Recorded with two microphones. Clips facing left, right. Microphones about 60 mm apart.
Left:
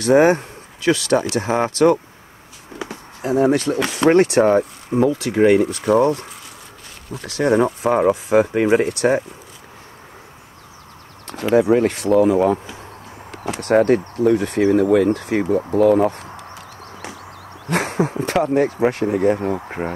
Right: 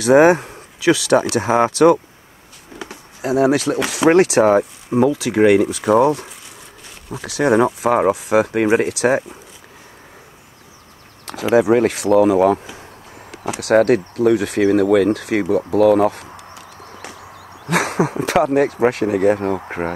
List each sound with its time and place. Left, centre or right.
0.0 s speech: centre
11.2 s speech: centre
13.3 s a sound: centre
13.7 s speech: centre
15.1 s a sound: centre
17.6 s speech: centre